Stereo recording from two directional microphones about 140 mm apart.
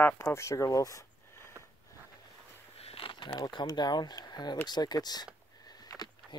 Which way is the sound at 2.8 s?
40° left (ahead or behind).